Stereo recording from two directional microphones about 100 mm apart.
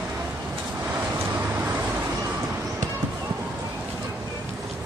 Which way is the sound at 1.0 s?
20° right (ahead or behind).